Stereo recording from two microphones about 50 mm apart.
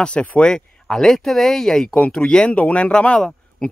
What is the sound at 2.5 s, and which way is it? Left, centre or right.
Speech, left.